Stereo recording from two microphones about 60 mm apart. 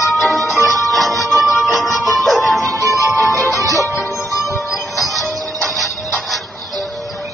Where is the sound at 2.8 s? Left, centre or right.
Left.